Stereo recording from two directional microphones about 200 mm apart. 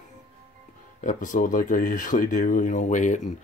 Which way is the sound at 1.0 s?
40° left (ahead or behind).